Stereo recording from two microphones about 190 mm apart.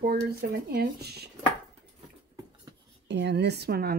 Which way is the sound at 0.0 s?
55° right (ahead or behind).